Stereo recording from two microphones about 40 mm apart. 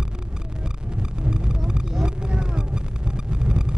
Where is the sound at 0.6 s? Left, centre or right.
Right.